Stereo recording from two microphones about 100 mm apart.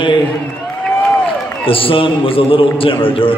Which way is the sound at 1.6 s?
65° left (ahead or behind).